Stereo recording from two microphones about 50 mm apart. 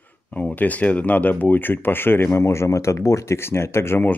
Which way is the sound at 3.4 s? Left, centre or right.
Left.